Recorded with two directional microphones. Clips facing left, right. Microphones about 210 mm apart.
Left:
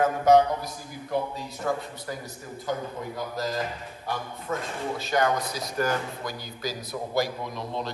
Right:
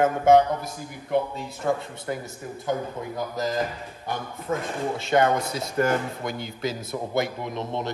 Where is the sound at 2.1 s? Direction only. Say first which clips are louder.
Right 8 dB; 25° right (ahead or behind).